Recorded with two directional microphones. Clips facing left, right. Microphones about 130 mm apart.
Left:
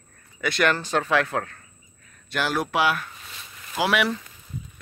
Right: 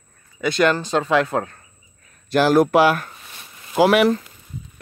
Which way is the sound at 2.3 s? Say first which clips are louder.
Right 11 dB; 40° right (ahead or behind).